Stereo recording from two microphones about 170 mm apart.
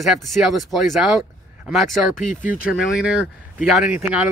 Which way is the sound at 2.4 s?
55° left (ahead or behind).